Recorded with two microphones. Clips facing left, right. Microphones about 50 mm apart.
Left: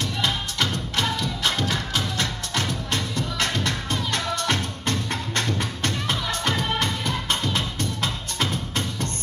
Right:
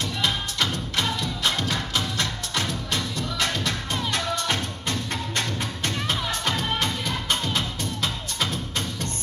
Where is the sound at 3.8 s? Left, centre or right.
Right.